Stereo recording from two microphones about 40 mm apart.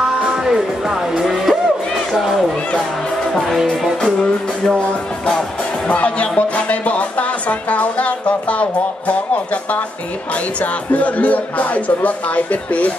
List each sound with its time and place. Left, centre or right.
0.3 s music: centre
4.0 s music: centre
5.9 s speech: left